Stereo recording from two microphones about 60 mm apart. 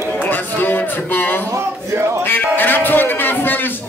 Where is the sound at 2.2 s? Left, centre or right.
Left.